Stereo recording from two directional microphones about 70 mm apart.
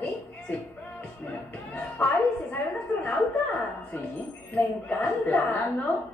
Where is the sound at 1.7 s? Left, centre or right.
Left.